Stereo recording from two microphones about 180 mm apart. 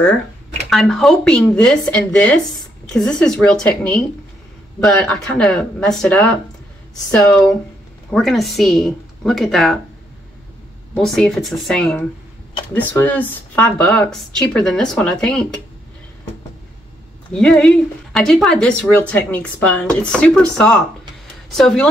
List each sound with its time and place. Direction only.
0.7 s speech: centre (ahead or behind)
8.1 s speech: centre (ahead or behind)
11.0 s speech: centre (ahead or behind)
17.3 s speech: 5° left (ahead or behind)